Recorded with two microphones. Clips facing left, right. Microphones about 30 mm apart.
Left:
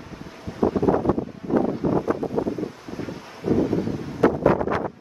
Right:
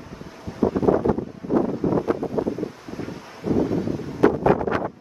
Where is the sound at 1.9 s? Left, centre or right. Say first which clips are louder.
Right 2 dB; right.